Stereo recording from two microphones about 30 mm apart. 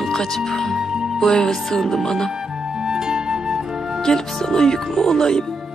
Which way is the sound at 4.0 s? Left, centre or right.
Left.